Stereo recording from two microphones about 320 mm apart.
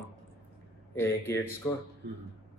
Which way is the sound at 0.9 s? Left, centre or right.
Centre.